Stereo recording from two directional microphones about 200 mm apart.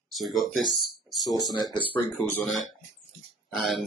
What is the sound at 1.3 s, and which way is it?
Speech, 20° left (ahead or behind).